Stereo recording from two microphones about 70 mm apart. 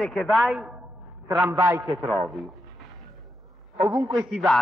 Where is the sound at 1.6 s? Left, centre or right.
Right.